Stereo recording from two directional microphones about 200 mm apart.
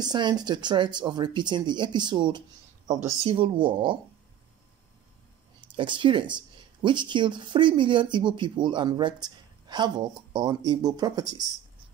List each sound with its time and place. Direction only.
0.0 s speech: 20° right (ahead or behind)
5.6 s speech: 25° right (ahead or behind)